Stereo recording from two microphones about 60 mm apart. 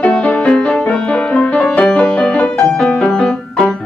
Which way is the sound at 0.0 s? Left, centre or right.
Left.